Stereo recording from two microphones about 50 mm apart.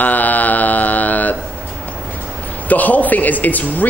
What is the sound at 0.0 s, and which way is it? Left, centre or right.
Mantra, left.